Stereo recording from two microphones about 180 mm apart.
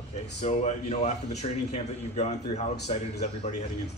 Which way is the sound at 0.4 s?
40° left (ahead or behind).